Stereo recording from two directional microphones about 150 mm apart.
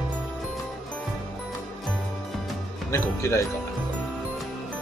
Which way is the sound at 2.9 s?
20° left (ahead or behind).